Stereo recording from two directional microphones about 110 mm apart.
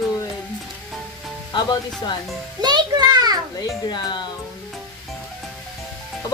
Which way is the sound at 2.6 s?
40° right (ahead or behind).